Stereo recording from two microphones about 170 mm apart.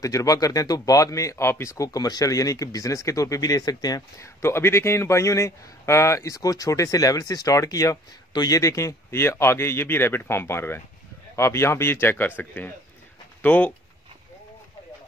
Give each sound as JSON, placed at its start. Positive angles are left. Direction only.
{"t": 0.0, "sound": "a man's voice", "side_deg": 20}